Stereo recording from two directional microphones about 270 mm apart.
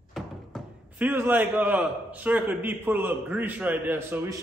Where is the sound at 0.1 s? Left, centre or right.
Centre.